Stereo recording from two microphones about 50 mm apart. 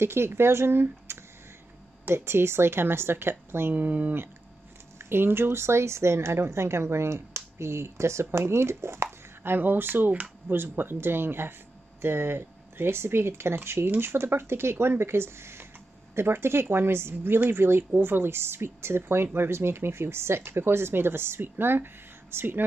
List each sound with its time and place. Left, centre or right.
0.0 s speech: right
1.1 s a sound: right
2.0 s speech: right
3.7 s speech: right
4.9 s speech: right
9.4 s speech: right